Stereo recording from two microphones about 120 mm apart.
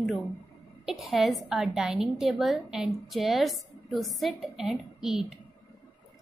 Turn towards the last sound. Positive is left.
turn(degrees=-5)  # may be behind; listen again after turning